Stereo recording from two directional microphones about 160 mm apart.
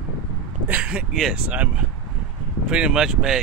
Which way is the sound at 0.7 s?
10° right (ahead or behind).